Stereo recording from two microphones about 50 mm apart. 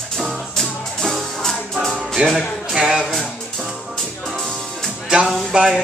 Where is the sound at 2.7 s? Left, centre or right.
Centre.